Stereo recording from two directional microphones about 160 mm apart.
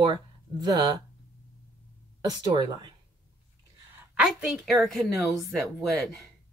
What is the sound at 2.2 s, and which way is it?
Speech, 25° right (ahead or behind).